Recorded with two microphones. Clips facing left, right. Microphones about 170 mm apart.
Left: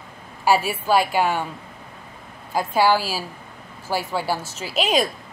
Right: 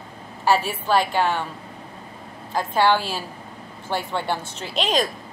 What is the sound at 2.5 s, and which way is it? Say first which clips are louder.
A woman's voice: left 1 dB; 10° left (ahead or behind).